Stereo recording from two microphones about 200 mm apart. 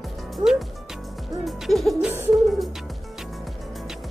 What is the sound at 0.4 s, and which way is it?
Hoot, centre (ahead or behind).